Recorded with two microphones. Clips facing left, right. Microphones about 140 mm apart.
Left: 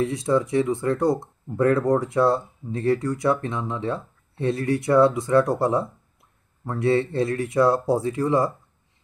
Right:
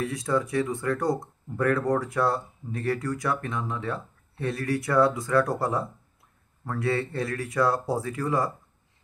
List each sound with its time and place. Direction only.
0.0 s speech: 25° left (ahead or behind)